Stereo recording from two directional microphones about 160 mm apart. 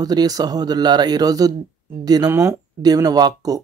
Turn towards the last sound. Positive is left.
turn(degrees=-25)  # may be behind; listen again after turning